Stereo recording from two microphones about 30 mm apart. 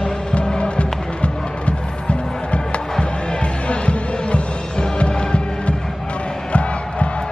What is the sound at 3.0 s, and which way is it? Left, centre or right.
Music, left.